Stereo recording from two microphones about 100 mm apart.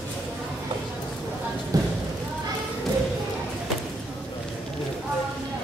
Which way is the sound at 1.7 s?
35° right (ahead or behind).